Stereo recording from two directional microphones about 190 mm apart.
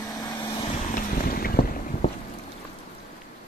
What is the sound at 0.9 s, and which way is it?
Vehicle, 50° left (ahead or behind).